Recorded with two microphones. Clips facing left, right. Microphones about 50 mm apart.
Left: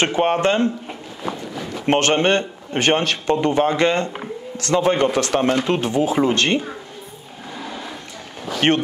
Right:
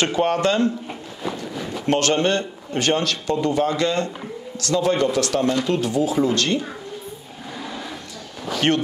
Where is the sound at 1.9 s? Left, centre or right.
Left.